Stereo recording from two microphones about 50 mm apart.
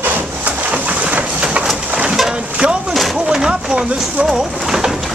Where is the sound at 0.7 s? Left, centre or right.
Right.